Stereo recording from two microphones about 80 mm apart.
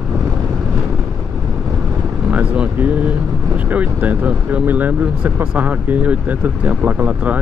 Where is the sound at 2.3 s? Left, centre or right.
Centre.